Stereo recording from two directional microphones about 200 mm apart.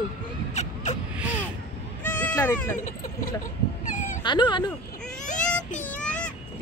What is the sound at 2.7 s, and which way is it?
Speech, 40° left (ahead or behind).